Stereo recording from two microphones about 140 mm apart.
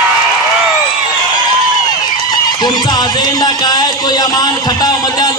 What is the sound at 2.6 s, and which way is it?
Speech, 30° left (ahead or behind).